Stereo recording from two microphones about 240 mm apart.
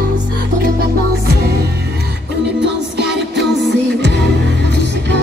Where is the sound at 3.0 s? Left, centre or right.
Right.